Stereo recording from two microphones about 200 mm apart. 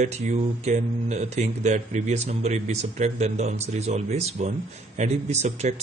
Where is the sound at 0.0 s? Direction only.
35° right (ahead or behind).